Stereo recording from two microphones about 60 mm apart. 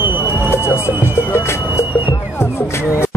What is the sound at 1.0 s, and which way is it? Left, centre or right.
Music, left.